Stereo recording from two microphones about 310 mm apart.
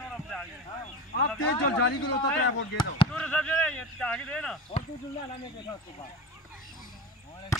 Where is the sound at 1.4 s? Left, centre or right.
Left.